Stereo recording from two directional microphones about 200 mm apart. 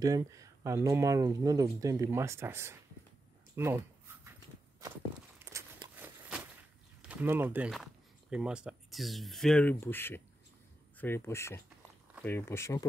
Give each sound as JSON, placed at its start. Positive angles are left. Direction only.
{"t": 0.0, "sound": "speech", "side_deg": -15}
{"t": 3.5, "sound": "a sound", "side_deg": -10}
{"t": 5.4, "sound": "walk", "side_deg": -15}
{"t": 7.0, "sound": "speech", "side_deg": -5}